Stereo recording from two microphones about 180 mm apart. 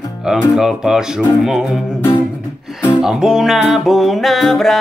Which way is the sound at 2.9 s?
5° right (ahead or behind).